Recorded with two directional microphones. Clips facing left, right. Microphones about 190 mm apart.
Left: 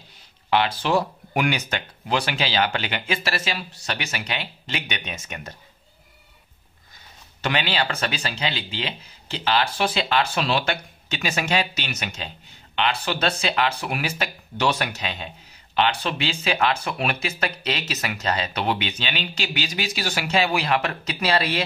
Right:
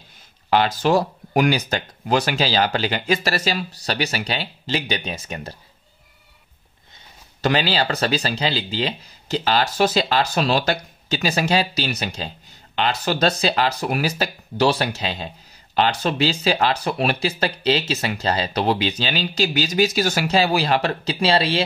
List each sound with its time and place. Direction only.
0.5 s speech: 40° right (ahead or behind)
7.4 s speech: 35° right (ahead or behind)